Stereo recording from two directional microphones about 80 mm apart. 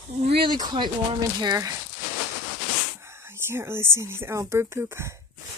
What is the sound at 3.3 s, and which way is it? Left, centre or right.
Speech, right.